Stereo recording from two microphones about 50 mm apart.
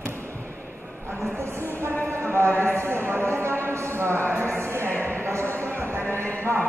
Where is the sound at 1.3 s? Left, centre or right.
Right.